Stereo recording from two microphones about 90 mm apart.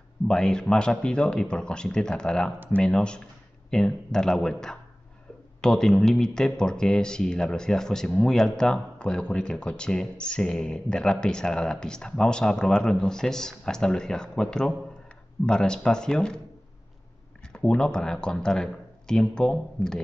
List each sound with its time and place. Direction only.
0.3 s speech: 10° left (ahead or behind)
17.5 s speech: 10° left (ahead or behind)